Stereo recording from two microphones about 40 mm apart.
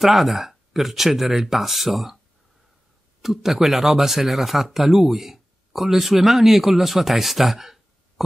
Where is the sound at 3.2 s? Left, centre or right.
Centre.